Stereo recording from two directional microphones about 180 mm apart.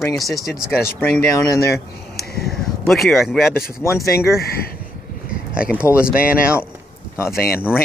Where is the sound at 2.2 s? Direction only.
60° left (ahead or behind).